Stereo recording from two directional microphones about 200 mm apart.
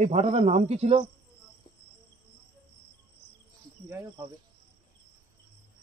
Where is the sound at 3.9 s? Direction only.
15° right (ahead or behind).